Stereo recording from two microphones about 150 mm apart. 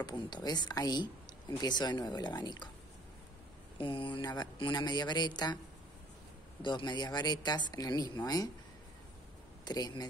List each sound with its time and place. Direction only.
0.0 s speech: 30° left (ahead or behind)
3.7 s speech: 35° left (ahead or behind)
6.6 s speech: 30° left (ahead or behind)
9.7 s speech: 25° left (ahead or behind)